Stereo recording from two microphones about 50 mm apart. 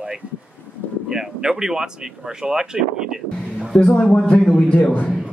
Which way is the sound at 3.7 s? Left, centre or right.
Centre.